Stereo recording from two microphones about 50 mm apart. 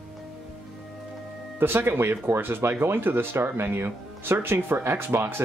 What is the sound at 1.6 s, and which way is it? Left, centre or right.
A man's voice, right.